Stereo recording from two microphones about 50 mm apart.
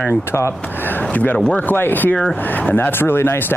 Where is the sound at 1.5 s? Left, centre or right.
Left.